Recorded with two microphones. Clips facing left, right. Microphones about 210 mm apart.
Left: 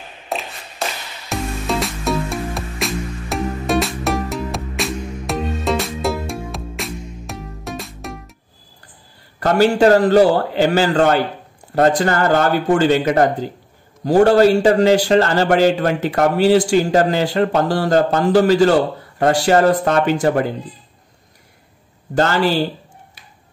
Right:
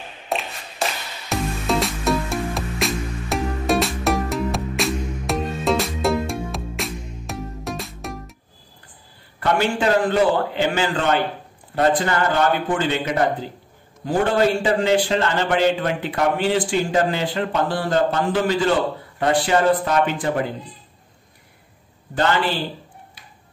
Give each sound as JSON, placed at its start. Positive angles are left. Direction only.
{"t": 0.3, "sound": "a sound", "side_deg": 0}
{"t": 1.3, "sound": "music", "side_deg": 0}
{"t": 9.4, "sound": "a man's voice", "side_deg": 40}
{"t": 22.1, "sound": "a man's voice", "side_deg": 45}